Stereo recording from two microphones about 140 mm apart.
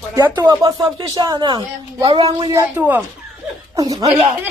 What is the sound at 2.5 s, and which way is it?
A woman's voice, 15° right (ahead or behind).